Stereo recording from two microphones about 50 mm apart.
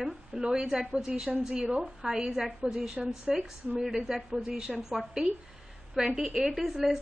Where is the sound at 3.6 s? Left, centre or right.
Right.